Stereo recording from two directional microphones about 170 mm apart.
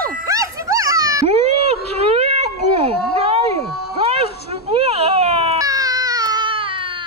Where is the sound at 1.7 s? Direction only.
35° right (ahead or behind).